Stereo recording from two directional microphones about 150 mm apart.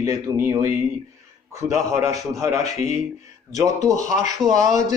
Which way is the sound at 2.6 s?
50° left (ahead or behind).